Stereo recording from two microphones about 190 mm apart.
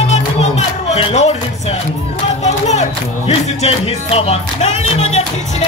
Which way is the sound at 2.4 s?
35° left (ahead or behind).